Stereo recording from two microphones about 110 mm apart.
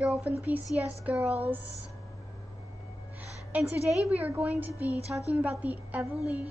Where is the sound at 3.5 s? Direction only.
15° right (ahead or behind).